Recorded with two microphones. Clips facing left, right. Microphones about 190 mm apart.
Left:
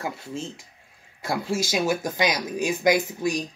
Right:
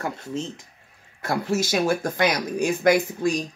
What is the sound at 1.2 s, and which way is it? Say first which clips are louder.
Speech: right 2 dB; 10° left (ahead or behind).